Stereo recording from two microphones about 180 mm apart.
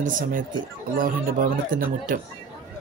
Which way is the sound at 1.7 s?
50° right (ahead or behind).